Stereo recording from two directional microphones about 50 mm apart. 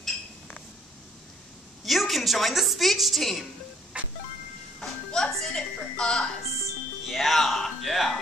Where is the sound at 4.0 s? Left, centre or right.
Right.